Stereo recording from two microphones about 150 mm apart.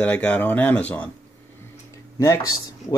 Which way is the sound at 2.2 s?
20° left (ahead or behind).